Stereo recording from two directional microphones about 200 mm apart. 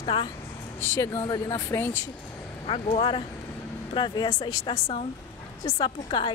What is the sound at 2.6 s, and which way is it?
Speech, 25° left (ahead or behind).